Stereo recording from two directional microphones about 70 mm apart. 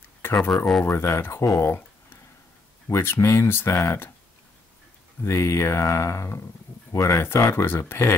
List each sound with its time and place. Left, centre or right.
0.2 s a sound: left
0.8 s speech: left
1.6 s speech: left
2.9 s speech: left
5.2 s speech: left
7.2 s speech: left